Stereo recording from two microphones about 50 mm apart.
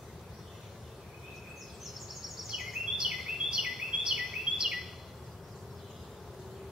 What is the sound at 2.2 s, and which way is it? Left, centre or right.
Bird vocalization, centre.